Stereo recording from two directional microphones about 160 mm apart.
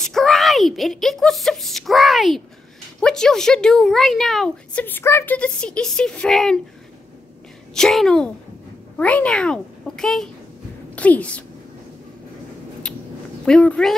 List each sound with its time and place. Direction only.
0.0 s a woman's voice: centre (ahead or behind)
7.7 s a woman's voice: centre (ahead or behind)
13.5 s a woman's voice: 5° left (ahead or behind)